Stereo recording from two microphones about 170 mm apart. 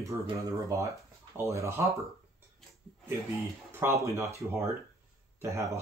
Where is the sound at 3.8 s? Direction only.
15° right (ahead or behind).